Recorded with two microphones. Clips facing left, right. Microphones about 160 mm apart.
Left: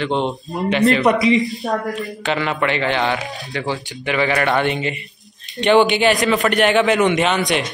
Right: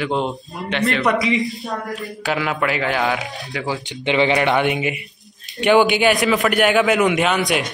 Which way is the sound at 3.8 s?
20° right (ahead or behind).